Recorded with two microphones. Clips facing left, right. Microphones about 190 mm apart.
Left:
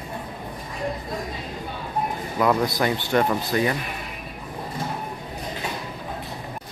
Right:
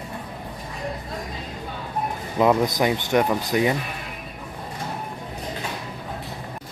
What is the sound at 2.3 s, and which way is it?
Speech, 20° right (ahead or behind).